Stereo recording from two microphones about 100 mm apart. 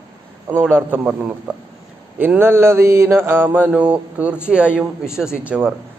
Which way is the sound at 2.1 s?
20° right (ahead or behind).